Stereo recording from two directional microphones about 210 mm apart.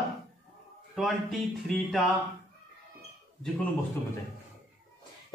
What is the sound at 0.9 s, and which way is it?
Speech, centre (ahead or behind).